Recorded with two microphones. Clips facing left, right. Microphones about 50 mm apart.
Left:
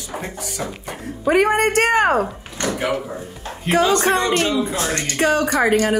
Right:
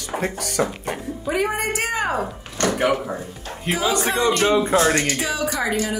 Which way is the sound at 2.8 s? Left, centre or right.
Right.